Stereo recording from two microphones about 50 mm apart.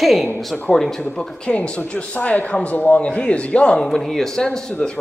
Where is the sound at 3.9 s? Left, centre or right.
Centre.